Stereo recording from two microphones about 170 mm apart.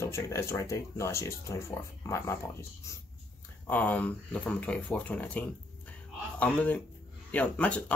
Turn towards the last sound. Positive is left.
turn(degrees=10)  # may be behind; listen again after turning